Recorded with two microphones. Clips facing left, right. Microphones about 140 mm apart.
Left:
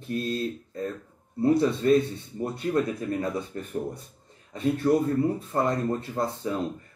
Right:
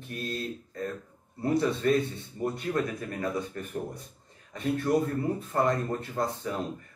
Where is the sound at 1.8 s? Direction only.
25° left (ahead or behind).